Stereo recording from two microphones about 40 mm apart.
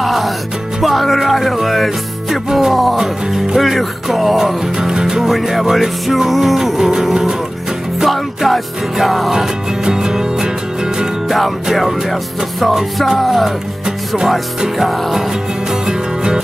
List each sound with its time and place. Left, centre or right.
0.0 s music: centre
0.7 s speech: centre
3.0 s speech: centre
4.7 s speech: centre
5.2 s speech: centre
8.0 s speech: centre
9.8 s music: centre
11.2 s music: centre
11.6 s speech: centre
13.8 s speech: centre
14.8 s speech: centre
15.9 s music: centre